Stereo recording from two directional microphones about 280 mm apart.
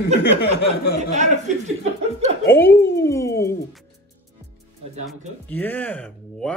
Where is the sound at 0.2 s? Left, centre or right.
Left.